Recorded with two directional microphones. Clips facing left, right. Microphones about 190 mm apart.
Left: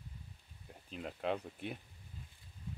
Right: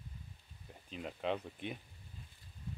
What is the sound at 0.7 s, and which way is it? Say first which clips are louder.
Speech: even; centre (ahead or behind).